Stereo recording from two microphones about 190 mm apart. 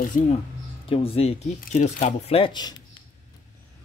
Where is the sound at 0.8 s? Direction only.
30° left (ahead or behind).